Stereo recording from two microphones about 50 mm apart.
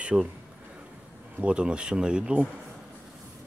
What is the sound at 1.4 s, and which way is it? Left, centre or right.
Speech, right.